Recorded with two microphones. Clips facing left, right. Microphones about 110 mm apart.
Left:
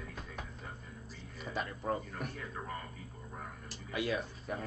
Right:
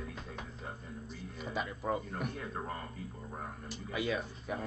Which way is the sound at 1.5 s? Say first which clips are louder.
Right 1 dB; 5° right (ahead or behind).